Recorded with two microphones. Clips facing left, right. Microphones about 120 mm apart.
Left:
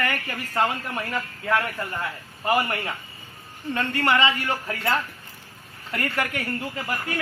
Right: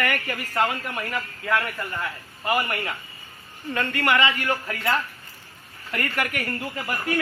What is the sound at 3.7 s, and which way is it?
A woman's voice, 30° left (ahead or behind).